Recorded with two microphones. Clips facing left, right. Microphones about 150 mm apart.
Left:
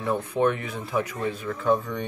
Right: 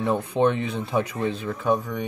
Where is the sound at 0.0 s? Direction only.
25° right (ahead or behind).